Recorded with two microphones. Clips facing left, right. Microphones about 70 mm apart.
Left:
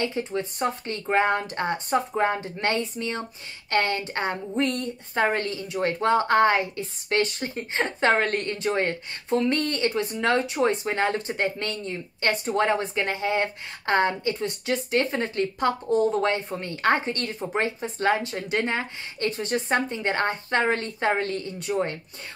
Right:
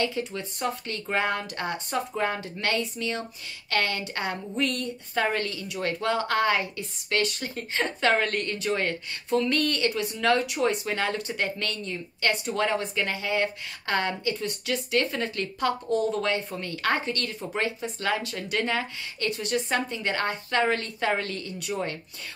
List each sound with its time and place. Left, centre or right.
0.0 s a woman's voice: left